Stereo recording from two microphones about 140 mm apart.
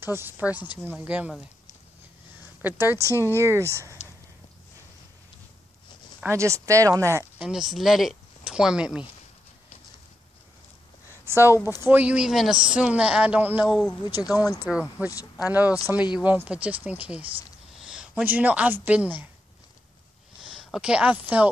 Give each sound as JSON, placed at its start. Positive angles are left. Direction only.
{"t": 0.0, "sound": "speech", "side_deg": -15}
{"t": 2.6, "sound": "speech", "side_deg": -15}
{"t": 6.2, "sound": "speech", "side_deg": -20}
{"t": 7.4, "sound": "speech", "side_deg": -5}
{"t": 11.2, "sound": "speech", "side_deg": -15}
{"t": 14.2, "sound": "speech", "side_deg": 25}
{"t": 14.7, "sound": "a woman's voice", "side_deg": -5}
{"t": 20.4, "sound": "speech", "side_deg": -5}